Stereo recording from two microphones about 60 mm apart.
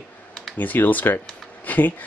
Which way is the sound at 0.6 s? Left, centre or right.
Left.